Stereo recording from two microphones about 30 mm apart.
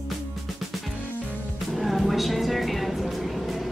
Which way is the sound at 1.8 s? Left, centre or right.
Centre.